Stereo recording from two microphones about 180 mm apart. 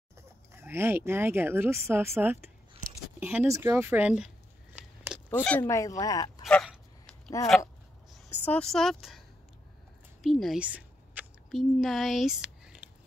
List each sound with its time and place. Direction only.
0.5 s speech: 15° right (ahead or behind)
5.3 s speech: 10° left (ahead or behind)
6.4 s dog: centre (ahead or behind)
8.3 s speech: 10° left (ahead or behind)
10.2 s a sound: centre (ahead or behind)